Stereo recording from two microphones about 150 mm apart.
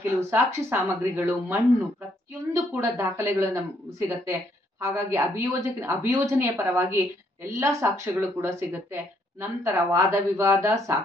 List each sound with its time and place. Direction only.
0.2 s speech: 15° right (ahead or behind)